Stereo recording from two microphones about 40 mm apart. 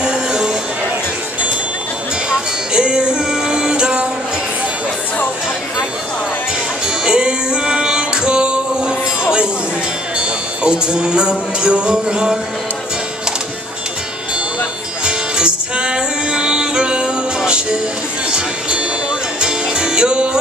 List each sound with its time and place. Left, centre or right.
0.0 s music: centre
2.2 s music: right
7.1 s music: right
15.0 s music: right
19.4 s music: right